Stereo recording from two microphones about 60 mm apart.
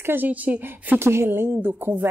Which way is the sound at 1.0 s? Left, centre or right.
Right.